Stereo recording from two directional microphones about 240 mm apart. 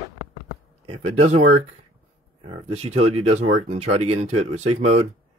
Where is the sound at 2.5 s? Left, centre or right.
Right.